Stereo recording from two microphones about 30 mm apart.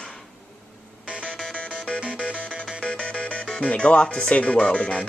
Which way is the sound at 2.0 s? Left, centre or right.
Right.